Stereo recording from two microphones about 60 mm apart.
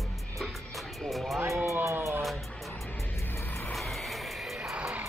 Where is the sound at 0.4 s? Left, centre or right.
Centre.